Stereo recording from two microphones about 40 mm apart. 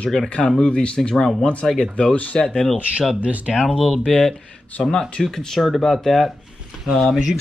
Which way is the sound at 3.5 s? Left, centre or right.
Centre.